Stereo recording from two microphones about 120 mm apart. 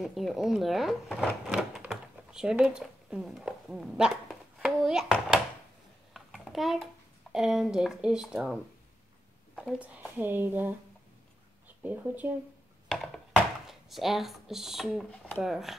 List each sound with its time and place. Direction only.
0.0 s speech: centre (ahead or behind)
6.1 s a sound: centre (ahead or behind)
7.3 s speech: 5° right (ahead or behind)
9.6 s speech: 10° right (ahead or behind)
11.8 s speech: 15° right (ahead or behind)
12.8 s a sound: centre (ahead or behind)
13.7 s speech: centre (ahead or behind)
15.0 s speech: 15° left (ahead or behind)
15.4 s speech: centre (ahead or behind)